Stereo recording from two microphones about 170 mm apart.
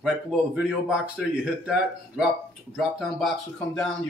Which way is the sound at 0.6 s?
5° right (ahead or behind).